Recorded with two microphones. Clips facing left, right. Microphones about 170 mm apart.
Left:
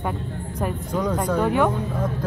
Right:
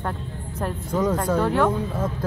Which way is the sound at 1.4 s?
10° left (ahead or behind).